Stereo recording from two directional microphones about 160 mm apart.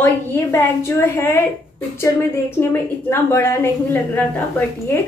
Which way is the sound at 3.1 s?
15° left (ahead or behind).